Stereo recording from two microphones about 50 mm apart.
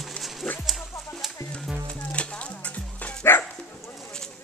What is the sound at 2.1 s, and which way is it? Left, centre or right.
Music, left.